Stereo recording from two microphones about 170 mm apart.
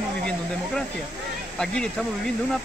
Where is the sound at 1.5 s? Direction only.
5° left (ahead or behind).